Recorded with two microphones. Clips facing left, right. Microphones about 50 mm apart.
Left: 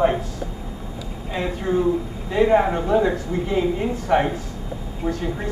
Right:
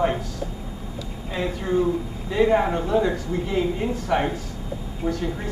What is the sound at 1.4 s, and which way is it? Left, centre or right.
Speech, centre.